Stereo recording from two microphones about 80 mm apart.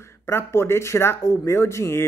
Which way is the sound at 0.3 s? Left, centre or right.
Left.